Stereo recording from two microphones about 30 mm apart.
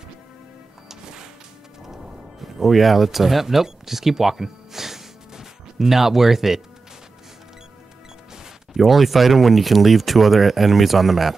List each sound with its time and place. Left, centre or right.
0.8 s music: right
2.4 s speech: centre
3.6 s music: centre
8.7 s speech: centre